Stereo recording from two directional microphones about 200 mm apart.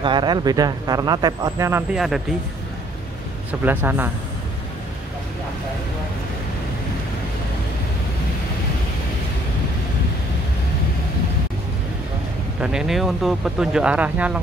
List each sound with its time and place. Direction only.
0.0 s speech: 25° right (ahead or behind)
2.0 s speech: centre (ahead or behind)
3.6 s speech: 10° right (ahead or behind)
12.5 s speech: 5° right (ahead or behind)